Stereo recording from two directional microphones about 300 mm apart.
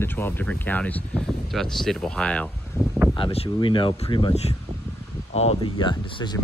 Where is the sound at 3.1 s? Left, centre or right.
Centre.